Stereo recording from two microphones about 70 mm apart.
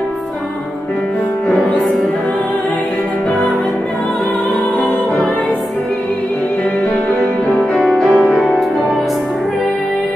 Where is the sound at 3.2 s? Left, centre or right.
Centre.